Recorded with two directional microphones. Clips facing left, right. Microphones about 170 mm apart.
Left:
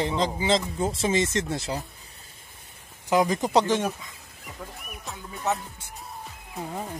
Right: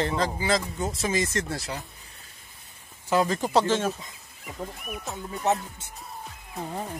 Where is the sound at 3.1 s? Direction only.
15° left (ahead or behind).